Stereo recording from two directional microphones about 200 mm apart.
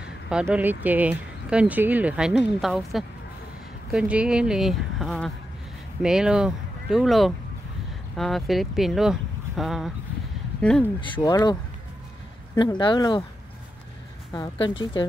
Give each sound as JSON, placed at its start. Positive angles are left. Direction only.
{"t": 0.3, "sound": "speech", "side_deg": -5}
{"t": 11.0, "sound": "speech", "side_deg": 20}
{"t": 12.5, "sound": "speech", "side_deg": 25}
{"t": 14.3, "sound": "speech", "side_deg": 25}